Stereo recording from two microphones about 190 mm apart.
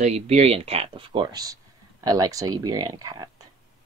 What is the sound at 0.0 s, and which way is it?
Speech, 35° right (ahead or behind).